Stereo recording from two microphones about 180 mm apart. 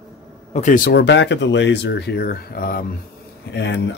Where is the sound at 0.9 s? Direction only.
75° left (ahead or behind); by 2.8 s 55° left (ahead or behind).